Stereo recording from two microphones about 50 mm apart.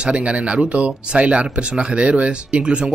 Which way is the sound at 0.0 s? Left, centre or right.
Right.